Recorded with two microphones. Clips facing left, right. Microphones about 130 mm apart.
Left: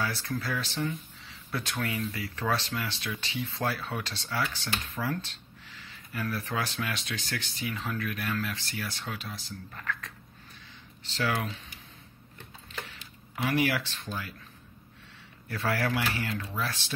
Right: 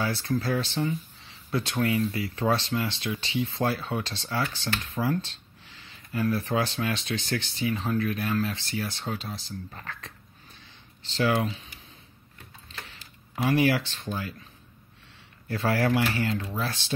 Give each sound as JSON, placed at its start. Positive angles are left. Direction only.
{"t": 0.0, "sound": "speech", "side_deg": -25}
{"t": 12.9, "sound": "a sound", "side_deg": -25}
{"t": 15.4, "sound": "speech", "side_deg": -25}